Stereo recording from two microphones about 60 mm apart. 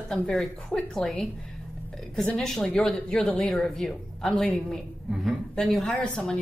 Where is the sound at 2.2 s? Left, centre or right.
Centre.